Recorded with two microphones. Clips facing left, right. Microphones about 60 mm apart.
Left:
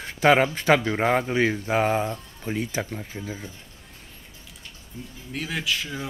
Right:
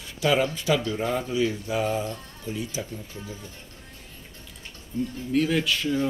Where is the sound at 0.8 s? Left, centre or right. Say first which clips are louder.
Left 5 dB; left.